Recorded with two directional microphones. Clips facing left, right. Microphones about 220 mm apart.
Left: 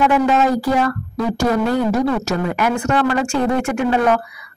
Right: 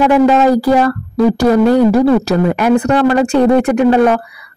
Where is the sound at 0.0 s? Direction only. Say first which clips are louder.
Right 6 dB; 35° right (ahead or behind).